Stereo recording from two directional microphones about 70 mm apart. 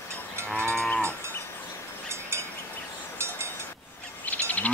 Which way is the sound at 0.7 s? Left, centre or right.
Centre.